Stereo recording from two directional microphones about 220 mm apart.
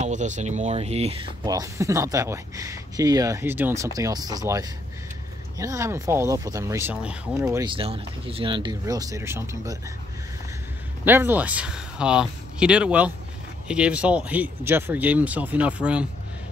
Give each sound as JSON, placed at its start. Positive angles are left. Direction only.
{"t": 0.0, "sound": "speech", "side_deg": -35}
{"t": 7.6, "sound": "speech", "side_deg": -25}
{"t": 11.1, "sound": "speech", "side_deg": -10}